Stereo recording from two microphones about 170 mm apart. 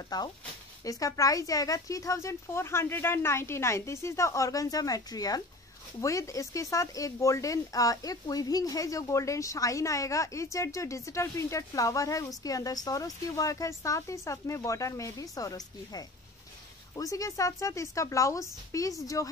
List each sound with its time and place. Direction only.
0.1 s speech: 25° left (ahead or behind)